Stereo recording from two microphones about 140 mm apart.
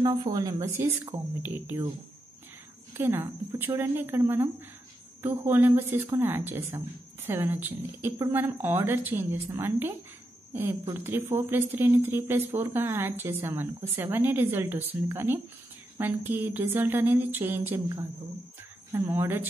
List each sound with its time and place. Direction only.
0.0 s speech: 30° right (ahead or behind); by 1.8 s 15° right (ahead or behind)
2.9 s a woman's voice: 20° right (ahead or behind)